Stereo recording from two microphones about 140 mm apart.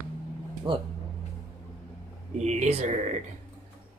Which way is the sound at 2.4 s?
50° right (ahead or behind).